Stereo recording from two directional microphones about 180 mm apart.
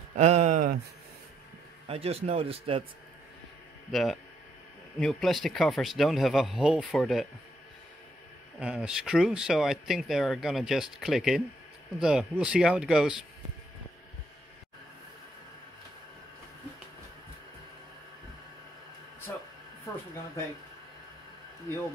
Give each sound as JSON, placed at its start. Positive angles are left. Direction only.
{"t": 0.2, "sound": "speech", "side_deg": -40}
{"t": 1.9, "sound": "speech", "side_deg": -35}
{"t": 3.9, "sound": "speech", "side_deg": 0}
{"t": 8.5, "sound": "speech", "side_deg": -5}
{"t": 19.3, "sound": "a sound", "side_deg": 10}